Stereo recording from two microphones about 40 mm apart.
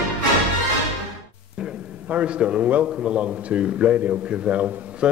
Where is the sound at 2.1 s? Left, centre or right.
Right.